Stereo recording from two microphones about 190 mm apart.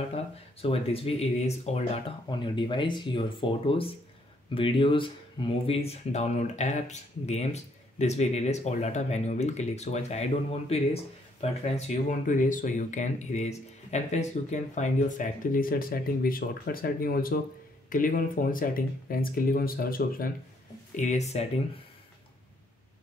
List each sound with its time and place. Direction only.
0.1 s speech: 30° left (ahead or behind)
2.2 s speech: 25° left (ahead or behind)
12.3 s speech: 45° left (ahead or behind)
20.9 s speech: 40° left (ahead or behind)